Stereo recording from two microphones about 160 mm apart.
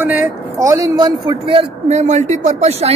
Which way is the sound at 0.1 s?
15° right (ahead or behind).